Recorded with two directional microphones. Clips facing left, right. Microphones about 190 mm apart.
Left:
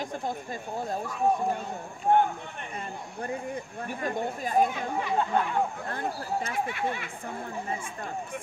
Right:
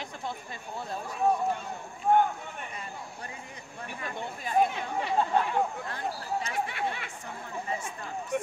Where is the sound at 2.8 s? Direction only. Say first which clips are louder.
Left 5 dB; 50° left (ahead or behind).